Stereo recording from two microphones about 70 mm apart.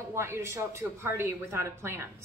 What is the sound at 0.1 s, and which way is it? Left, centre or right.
A woman's voice, right.